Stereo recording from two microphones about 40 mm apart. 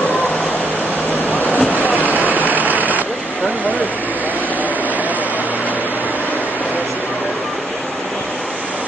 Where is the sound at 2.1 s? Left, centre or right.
Right.